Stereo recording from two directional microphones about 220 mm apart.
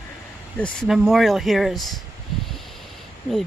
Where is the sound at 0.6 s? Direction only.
5° left (ahead or behind).